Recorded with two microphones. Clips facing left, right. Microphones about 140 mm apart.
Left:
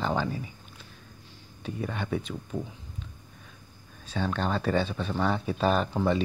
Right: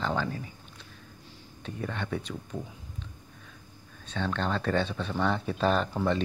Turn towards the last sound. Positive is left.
turn(degrees=5)  # may be behind; listen again after turning